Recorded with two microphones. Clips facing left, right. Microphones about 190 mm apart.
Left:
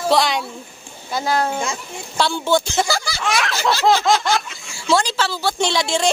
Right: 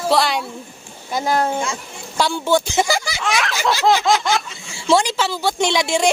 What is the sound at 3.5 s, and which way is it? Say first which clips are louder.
Speech: even; 15° right (ahead or behind).